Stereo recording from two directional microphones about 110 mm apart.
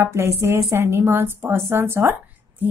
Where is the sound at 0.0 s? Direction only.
25° right (ahead or behind).